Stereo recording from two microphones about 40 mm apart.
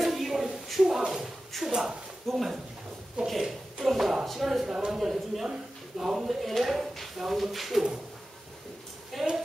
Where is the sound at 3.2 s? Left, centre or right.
Right.